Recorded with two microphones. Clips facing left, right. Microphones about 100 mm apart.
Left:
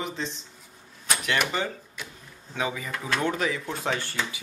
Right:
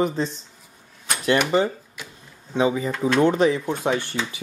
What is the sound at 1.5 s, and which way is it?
Speech, 30° right (ahead or behind).